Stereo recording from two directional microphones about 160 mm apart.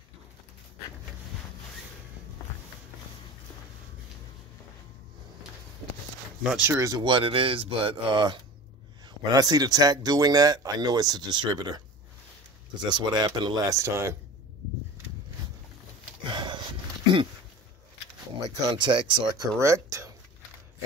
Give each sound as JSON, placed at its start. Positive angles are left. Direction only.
{"t": 6.6, "sound": "speech", "side_deg": -15}
{"t": 12.8, "sound": "speech", "side_deg": -25}
{"t": 16.3, "sound": "a sound", "side_deg": -30}
{"t": 18.7, "sound": "speech", "side_deg": -30}
{"t": 19.6, "sound": "speech", "side_deg": -20}